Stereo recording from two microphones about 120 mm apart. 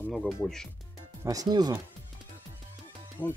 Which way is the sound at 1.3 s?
35° right (ahead or behind).